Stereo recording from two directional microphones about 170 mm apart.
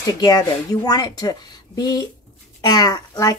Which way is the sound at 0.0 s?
25° left (ahead or behind).